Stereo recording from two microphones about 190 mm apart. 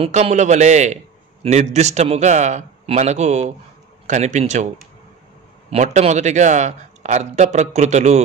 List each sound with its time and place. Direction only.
0.0 s a man's voice: 35° right (ahead or behind)
5.7 s a man's voice: 35° right (ahead or behind)